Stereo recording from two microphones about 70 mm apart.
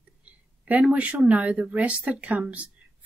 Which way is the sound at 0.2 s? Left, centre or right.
Right.